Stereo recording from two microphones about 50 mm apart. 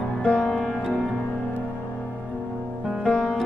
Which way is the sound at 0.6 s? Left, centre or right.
Centre.